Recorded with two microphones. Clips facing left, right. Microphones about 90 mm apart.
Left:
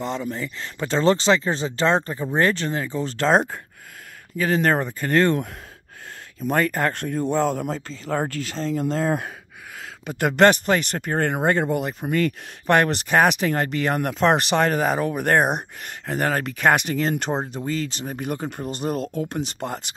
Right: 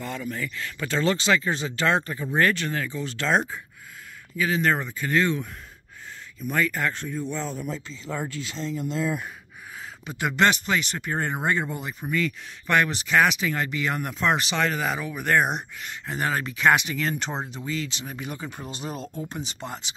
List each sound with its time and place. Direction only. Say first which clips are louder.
0.0 s speech: left 4 dB; 30° left (ahead or behind); by 5.4 s 50° left (ahead or behind)
6.5 s speech: left 4 dB; 50° left (ahead or behind); by 7.7 s 70° left (ahead or behind)
7.7 s speech: left 6 dB; 50° left (ahead or behind)